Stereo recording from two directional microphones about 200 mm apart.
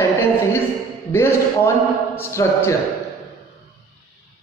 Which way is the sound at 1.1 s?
15° left (ahead or behind).